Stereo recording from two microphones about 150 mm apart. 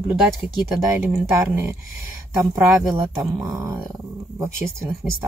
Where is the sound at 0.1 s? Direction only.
Centre (ahead or behind).